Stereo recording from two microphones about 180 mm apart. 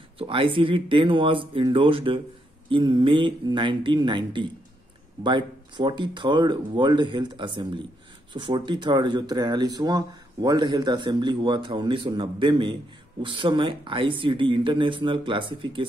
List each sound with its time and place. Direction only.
0.2 s speech: 30° right (ahead or behind)